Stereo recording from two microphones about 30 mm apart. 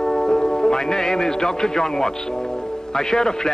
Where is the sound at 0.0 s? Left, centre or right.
Centre.